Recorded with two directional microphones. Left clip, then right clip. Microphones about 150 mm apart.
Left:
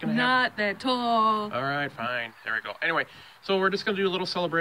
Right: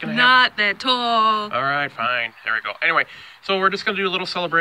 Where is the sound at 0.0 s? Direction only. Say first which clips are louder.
Right 9 dB; 10° right (ahead or behind).